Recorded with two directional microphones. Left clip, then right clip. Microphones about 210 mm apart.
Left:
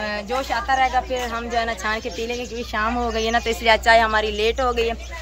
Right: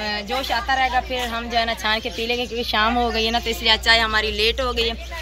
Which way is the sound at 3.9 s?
35° left (ahead or behind).